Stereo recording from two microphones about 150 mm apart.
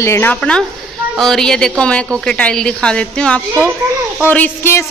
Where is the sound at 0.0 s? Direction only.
15° left (ahead or behind).